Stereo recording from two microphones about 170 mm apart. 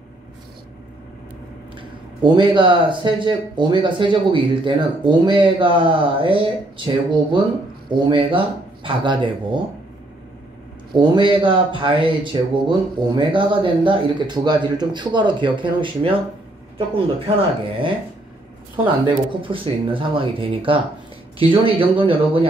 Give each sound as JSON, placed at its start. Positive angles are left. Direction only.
{"t": 1.8, "sound": "speech", "side_deg": -30}
{"t": 10.9, "sound": "speech", "side_deg": -30}
{"t": 19.0, "sound": "speech", "side_deg": -30}